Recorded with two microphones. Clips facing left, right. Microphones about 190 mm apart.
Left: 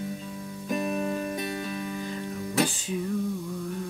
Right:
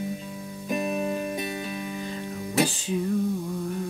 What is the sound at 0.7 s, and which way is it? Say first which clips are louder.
Music: right 1 dB; 10° right (ahead or behind).